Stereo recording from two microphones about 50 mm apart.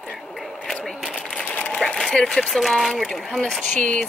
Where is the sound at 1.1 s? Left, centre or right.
Centre.